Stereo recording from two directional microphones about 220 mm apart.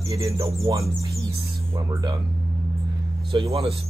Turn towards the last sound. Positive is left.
turn(degrees=-25)  # may be behind; listen again after turning